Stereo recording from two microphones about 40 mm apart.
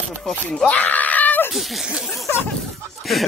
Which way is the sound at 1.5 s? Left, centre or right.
Centre.